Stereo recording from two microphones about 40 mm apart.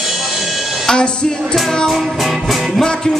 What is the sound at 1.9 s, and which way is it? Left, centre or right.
Music, centre.